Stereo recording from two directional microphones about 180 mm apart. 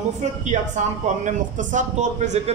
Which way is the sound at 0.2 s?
40° right (ahead or behind).